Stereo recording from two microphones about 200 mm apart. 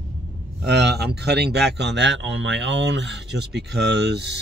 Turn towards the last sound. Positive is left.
turn(degrees=-60)  # may be behind; listen again after turning